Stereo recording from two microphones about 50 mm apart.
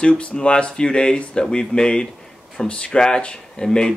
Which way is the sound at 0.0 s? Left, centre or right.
Left.